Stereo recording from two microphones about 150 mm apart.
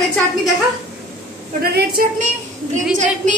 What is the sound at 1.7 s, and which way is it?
Speech, 85° right.